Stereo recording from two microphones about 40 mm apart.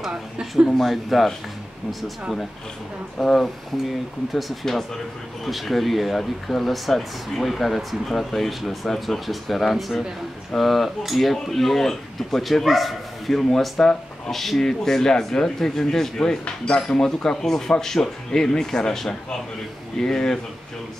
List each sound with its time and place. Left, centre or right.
0.7 s speech: centre
3.2 s speech: centre
16.4 s speech: left